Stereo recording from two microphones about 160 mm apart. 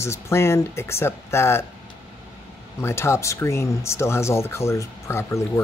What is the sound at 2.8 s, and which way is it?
Speech, 15° left (ahead or behind).